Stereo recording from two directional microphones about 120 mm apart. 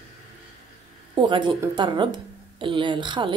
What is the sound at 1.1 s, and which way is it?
Speech, 40° right (ahead or behind).